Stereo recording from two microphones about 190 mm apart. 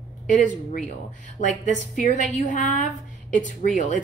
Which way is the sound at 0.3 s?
40° left (ahead or behind).